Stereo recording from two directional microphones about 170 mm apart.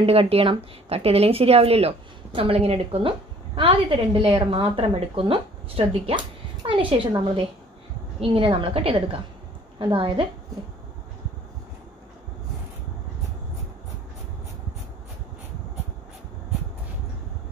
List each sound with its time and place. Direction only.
0.0 s a woman's voice: 35° right (ahead or behind)